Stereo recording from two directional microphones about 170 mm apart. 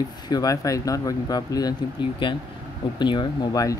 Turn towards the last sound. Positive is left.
turn(degrees=20)  # may be behind; listen again after turning